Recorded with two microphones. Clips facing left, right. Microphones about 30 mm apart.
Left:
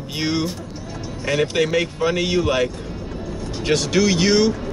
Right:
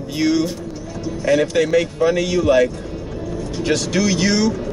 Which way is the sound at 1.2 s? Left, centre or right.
Centre.